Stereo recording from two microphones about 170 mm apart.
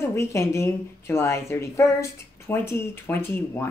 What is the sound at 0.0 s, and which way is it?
A woman's voice, 15° left (ahead or behind).